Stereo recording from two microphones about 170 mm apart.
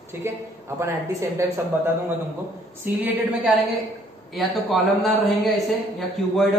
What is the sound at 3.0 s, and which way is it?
Speech, 10° right (ahead or behind).